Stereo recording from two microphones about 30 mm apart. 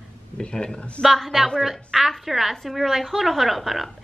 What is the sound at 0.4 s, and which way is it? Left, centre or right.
Speech, left.